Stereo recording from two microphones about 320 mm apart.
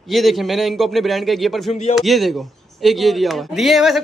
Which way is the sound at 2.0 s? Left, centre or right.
Centre.